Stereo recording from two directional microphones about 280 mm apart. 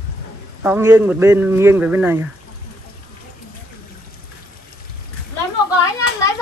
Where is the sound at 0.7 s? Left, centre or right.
Centre.